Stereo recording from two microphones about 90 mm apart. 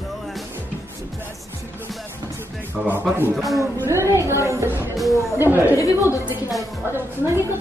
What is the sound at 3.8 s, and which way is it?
Music, 30° right (ahead or behind).